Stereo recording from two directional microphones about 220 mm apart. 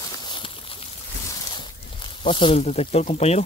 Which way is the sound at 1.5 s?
25° left (ahead or behind).